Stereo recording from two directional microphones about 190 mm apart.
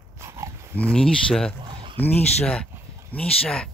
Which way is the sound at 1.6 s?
25° right (ahead or behind).